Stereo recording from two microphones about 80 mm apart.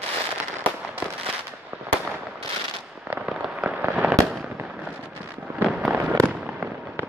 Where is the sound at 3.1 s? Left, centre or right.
Right.